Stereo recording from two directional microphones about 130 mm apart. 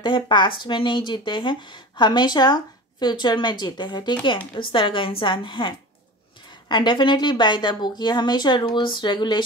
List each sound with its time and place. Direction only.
0.0 s speech: 35° left (ahead or behind)